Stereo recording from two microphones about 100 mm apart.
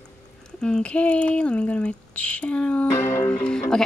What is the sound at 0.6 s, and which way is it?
Speech, 10° left (ahead or behind).